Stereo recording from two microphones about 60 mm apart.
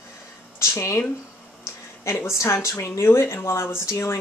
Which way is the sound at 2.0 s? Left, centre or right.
Left.